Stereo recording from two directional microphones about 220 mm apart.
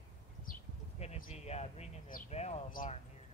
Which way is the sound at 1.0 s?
30° left (ahead or behind).